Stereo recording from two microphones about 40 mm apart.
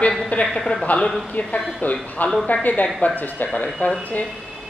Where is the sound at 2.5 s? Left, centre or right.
Left.